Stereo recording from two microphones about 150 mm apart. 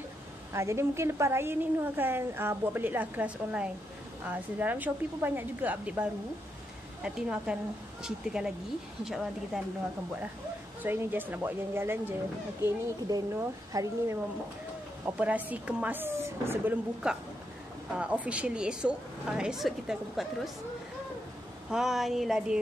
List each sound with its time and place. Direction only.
0.5 s a woman's voice: 20° right (ahead or behind); by 9.6 s 5° right (ahead or behind)
10.8 s a woman's voice: 15° right (ahead or behind)
21.6 s a woman's voice: 5° right (ahead or behind)